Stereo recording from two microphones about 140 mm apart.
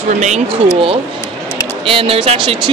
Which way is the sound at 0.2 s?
55° right (ahead or behind).